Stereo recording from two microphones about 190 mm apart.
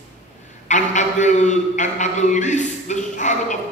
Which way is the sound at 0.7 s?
40° left (ahead or behind).